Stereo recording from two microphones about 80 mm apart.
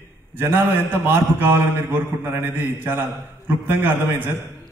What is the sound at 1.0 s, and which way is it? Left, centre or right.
A man's voice, right.